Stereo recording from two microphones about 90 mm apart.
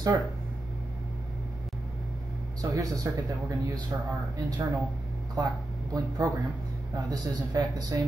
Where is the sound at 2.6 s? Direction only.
40° right (ahead or behind).